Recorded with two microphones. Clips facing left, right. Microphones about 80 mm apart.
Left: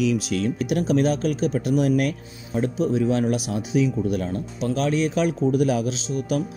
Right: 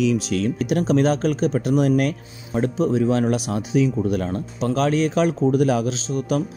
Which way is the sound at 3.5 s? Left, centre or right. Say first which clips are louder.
Right 2 dB; right.